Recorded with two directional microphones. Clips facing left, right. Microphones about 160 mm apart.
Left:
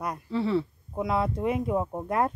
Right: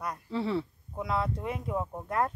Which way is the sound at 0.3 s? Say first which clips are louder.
Left 4 dB; 15° right (ahead or behind).